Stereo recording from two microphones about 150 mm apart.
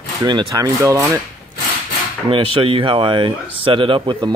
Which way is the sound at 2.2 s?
35° right (ahead or behind).